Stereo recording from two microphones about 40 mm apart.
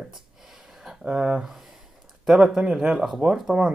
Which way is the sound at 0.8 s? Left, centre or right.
Centre.